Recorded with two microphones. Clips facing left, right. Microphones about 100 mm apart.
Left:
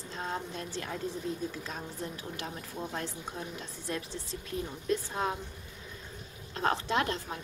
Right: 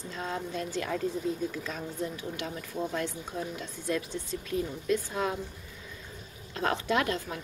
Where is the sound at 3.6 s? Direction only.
30° left (ahead or behind).